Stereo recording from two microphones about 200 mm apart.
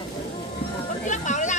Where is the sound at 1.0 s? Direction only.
35° left (ahead or behind).